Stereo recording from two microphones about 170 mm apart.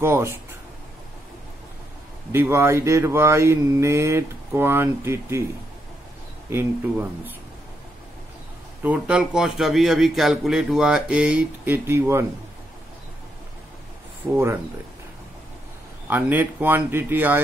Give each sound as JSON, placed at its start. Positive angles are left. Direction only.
{"t": 0.0, "sound": "speech", "side_deg": -15}
{"t": 2.3, "sound": "speech", "side_deg": -15}
{"t": 6.5, "sound": "speech", "side_deg": -10}
{"t": 8.8, "sound": "speech", "side_deg": -10}
{"t": 14.2, "sound": "speech", "side_deg": -20}
{"t": 16.1, "sound": "speech", "side_deg": -10}